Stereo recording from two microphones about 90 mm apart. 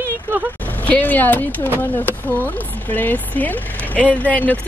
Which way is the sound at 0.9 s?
15° left (ahead or behind).